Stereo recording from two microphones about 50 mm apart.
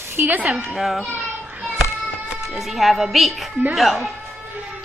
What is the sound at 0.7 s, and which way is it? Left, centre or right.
Speech, centre.